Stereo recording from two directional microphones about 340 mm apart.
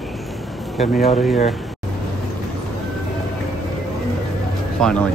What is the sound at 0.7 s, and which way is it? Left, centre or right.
Speech, centre.